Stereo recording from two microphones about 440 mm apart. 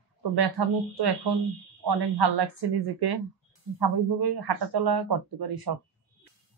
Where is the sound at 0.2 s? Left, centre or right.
Right.